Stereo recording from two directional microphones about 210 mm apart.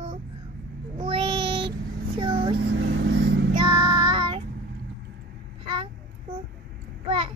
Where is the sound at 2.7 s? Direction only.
55° right (ahead or behind).